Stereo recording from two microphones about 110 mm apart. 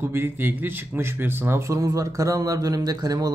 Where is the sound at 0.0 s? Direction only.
20° right (ahead or behind).